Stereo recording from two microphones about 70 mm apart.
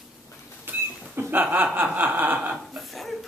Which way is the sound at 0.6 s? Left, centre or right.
Right.